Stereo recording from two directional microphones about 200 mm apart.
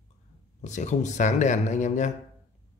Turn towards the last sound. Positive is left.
turn(degrees=35)  # may be behind; listen again after turning